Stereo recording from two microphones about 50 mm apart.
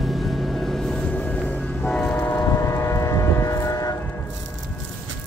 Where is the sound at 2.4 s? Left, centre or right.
Left.